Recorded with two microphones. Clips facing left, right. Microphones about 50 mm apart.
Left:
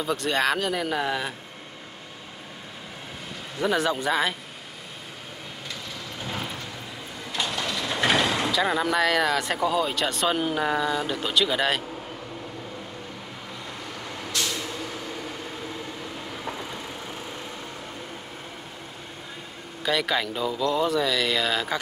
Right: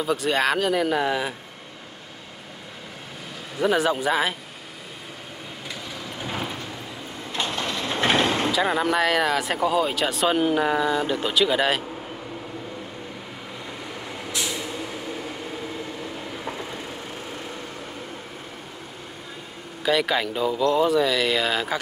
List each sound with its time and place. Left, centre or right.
0.0 s speech: centre
3.5 s speech: centre
6.2 s vehicle: centre
7.3 s vehicle: right
8.5 s speech: centre
14.0 s vehicle: centre
16.0 s train: centre
19.8 s speech: centre